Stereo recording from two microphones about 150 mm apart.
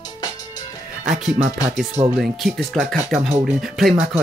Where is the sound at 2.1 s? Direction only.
Centre (ahead or behind).